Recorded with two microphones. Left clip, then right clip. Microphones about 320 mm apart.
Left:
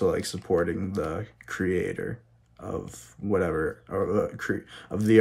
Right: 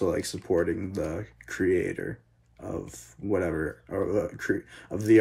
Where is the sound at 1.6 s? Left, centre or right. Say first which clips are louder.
Right 2 dB; centre.